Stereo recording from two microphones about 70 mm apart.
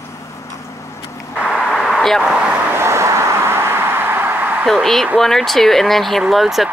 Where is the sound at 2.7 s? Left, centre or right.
Right.